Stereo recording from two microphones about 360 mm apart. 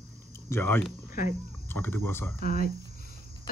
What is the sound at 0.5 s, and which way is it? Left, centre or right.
Speech, centre.